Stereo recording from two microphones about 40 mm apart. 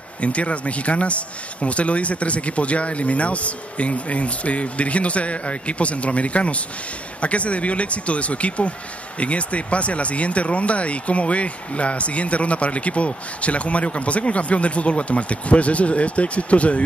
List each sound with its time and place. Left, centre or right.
0.2 s speech: left